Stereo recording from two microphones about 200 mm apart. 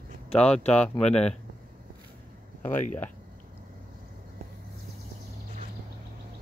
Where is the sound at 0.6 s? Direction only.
5° left (ahead or behind).